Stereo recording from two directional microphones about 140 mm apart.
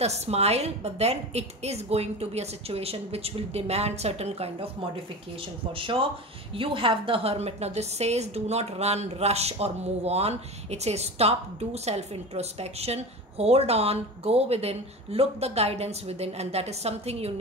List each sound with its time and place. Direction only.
0.0 s a woman's voice: 50° right (ahead or behind)
5.7 s a woman's voice: 40° right (ahead or behind)